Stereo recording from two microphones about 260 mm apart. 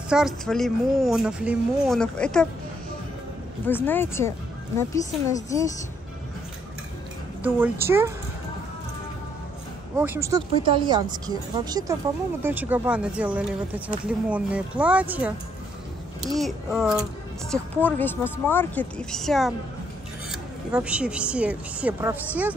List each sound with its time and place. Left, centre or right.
0.1 s a woman's voice: centre
3.6 s a woman's voice: centre
7.4 s speech: centre
9.9 s speech: centre
16.3 s a woman's voice: centre